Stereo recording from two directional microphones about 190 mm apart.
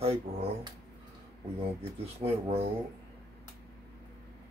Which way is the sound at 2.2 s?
30° right (ahead or behind).